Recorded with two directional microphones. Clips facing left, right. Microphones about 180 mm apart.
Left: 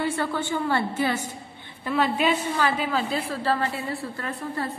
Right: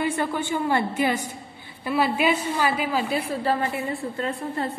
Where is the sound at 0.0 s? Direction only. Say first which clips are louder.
Right 1 dB; 15° right (ahead or behind).